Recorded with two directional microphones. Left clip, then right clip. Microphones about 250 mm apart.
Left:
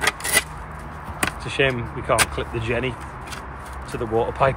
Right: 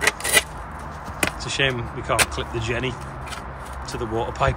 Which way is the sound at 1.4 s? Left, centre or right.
Centre.